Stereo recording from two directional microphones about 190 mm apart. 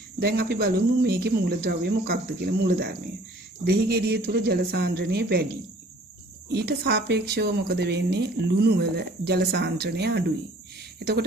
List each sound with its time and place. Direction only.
0.2 s a woman's voice: 55° right (ahead or behind)
6.5 s a woman's voice: 60° right (ahead or behind)